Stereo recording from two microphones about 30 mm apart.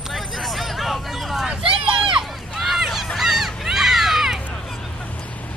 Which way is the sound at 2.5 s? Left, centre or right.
Centre.